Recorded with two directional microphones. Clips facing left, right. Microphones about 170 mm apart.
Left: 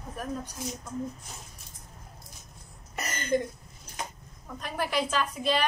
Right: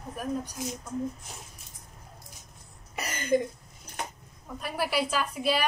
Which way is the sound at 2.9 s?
10° right (ahead or behind).